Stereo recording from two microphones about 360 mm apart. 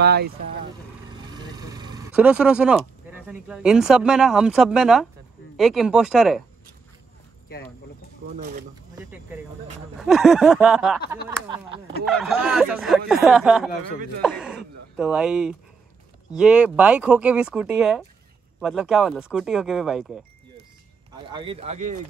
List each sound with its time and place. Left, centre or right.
0.0 s speech: right
1.2 s speech: centre
8.4 s speech: right
9.9 s speech: centre
11.2 s speech: centre
12.1 s speech: centre
21.3 s speech: centre